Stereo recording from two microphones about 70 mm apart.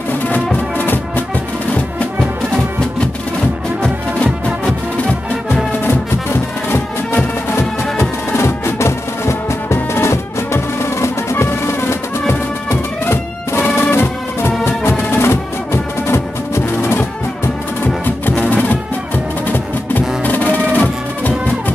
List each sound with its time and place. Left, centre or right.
0.3 s music: left
6.7 s music: left
18.0 s music: left
20.2 s music: left